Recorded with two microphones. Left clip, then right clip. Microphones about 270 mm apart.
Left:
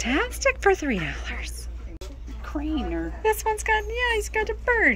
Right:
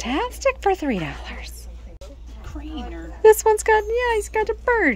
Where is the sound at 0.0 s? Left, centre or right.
Centre.